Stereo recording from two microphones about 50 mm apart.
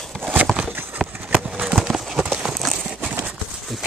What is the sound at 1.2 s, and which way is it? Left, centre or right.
Clip-clop, right.